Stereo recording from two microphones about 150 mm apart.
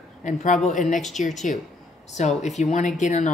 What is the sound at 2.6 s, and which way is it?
Speech, 55° left (ahead or behind).